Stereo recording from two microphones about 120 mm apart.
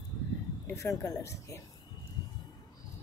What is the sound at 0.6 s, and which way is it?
Speech, 25° left (ahead or behind).